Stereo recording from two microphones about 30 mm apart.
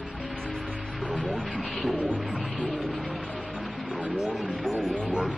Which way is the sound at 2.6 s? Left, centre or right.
Left.